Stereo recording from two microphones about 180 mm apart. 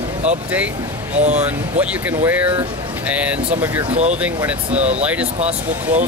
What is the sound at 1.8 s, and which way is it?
Speech, 10° right (ahead or behind).